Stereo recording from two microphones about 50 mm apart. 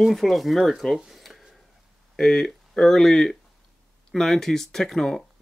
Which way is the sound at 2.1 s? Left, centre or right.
Centre.